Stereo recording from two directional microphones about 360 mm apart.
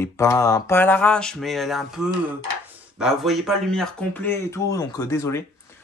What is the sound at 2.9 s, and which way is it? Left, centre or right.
Speech, centre.